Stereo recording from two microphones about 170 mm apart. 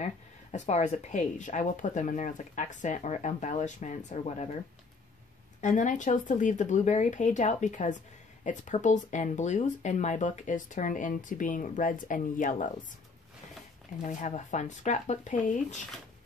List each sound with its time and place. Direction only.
0.0 s speech: 40° left (ahead or behind)
5.6 s speech: 45° left (ahead or behind)
14.0 s speech: 45° left (ahead or behind)